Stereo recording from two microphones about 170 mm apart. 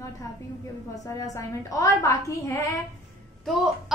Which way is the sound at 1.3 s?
20° left (ahead or behind).